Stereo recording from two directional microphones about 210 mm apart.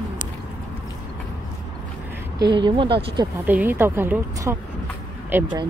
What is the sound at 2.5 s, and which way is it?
Speech, 25° right (ahead or behind).